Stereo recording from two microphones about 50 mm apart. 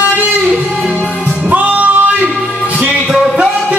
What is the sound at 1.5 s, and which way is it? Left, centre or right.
Music, right.